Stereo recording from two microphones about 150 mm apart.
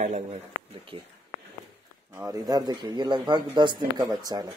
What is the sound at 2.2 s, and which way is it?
A man's voice, 25° right (ahead or behind).